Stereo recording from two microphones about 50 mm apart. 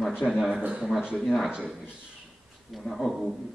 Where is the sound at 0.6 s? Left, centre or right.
Right.